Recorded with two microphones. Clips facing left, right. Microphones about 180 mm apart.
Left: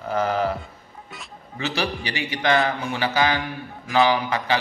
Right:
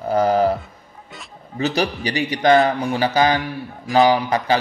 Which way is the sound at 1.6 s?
40° right (ahead or behind).